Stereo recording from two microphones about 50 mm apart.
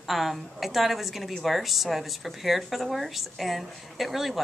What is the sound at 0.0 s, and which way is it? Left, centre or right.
Speech, centre.